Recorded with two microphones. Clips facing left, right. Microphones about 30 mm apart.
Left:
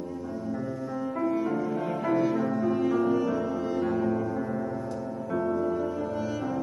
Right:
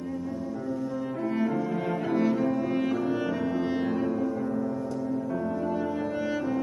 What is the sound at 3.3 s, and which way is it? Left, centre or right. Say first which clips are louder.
Music: right 1 dB; right.